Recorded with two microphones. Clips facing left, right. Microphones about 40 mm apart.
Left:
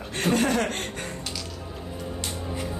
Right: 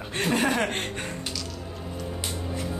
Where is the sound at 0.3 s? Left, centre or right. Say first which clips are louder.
Left 1 dB; right.